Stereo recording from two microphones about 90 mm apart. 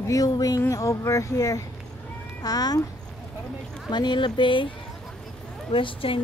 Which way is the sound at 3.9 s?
55° left (ahead or behind).